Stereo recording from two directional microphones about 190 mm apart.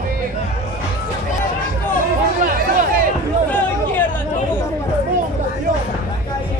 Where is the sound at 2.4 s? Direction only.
45° right (ahead or behind).